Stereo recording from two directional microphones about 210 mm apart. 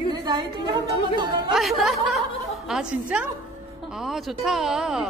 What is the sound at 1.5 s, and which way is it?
Speech, centre (ahead or behind).